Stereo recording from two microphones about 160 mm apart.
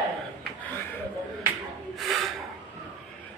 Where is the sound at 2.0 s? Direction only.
Centre (ahead or behind).